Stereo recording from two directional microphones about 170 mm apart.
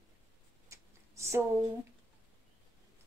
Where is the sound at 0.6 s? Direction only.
15° right (ahead or behind).